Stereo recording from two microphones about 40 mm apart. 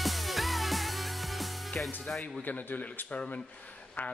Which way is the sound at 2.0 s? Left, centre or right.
Centre.